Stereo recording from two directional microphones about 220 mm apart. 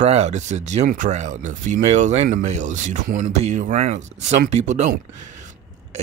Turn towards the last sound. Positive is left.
turn(degrees=-35)  # may be behind; listen again after turning